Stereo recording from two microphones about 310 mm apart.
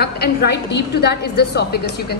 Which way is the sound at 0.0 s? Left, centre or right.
Left.